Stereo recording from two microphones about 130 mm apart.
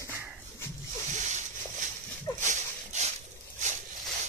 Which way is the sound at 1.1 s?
70° right (ahead or behind).